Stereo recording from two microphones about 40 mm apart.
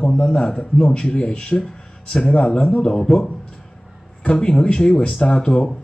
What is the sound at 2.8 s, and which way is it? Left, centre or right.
Speech, centre.